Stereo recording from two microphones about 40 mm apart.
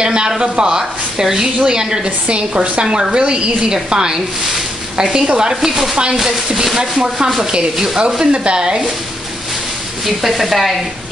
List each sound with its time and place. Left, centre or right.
0.0 s a woman's voice: right
2.0 s a woman's voice: right
2.8 s a woman's voice: centre
5.5 s speech: centre
6.8 s a woman's voice: right
7.7 s speech: centre
8.2 s a woman's voice: right
10.0 s speech: centre